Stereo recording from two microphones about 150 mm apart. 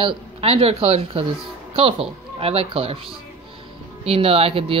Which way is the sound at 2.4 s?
40° right (ahead or behind).